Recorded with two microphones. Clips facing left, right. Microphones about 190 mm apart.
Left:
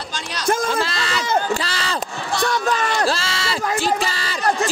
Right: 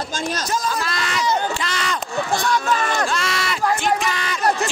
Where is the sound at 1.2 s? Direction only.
50° left (ahead or behind).